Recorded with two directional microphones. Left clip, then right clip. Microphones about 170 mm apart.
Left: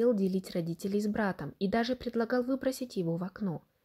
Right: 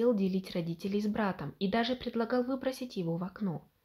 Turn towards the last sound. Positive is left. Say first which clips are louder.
# left 1 dB
turn(degrees=35)  # may be behind; listen again after turning